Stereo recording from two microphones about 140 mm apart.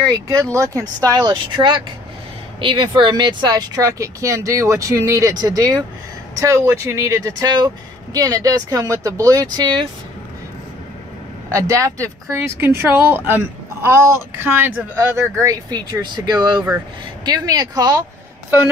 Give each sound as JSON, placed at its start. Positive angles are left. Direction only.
{"t": 0.0, "sound": "speech", "side_deg": -25}
{"t": 11.5, "sound": "speech", "side_deg": -20}